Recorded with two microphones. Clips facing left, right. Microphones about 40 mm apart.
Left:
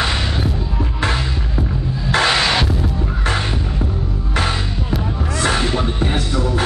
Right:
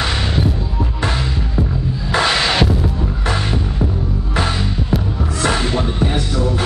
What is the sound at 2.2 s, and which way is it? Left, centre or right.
Music, centre.